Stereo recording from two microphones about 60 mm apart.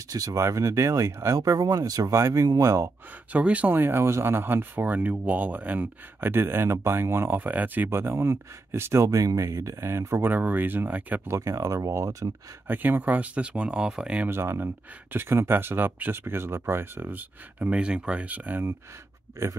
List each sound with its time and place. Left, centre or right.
0.1 s speech: right
0.4 s speech: right
1.4 s speech: right
2.1 s speech: right
3.3 s speech: right
3.7 s speech: right
6.2 s speech: right
7.3 s speech: right
7.9 s speech: right
10.2 s speech: right
11.2 s speech: right
12.6 s speech: right; by 14.2 s centre
14.3 s speech: right
19.4 s speech: right